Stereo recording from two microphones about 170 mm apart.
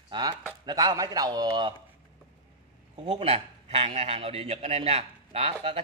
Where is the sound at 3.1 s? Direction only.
35° right (ahead or behind).